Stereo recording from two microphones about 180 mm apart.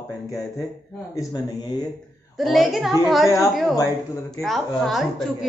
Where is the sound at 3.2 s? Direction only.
15° left (ahead or behind).